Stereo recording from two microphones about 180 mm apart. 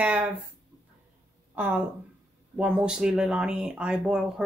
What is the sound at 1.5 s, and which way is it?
Speech, 10° right (ahead or behind).